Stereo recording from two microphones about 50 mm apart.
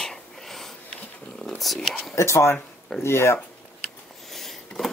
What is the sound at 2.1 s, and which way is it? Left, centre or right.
Speech, left.